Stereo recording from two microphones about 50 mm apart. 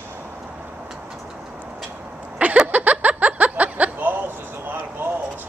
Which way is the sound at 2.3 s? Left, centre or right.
Right.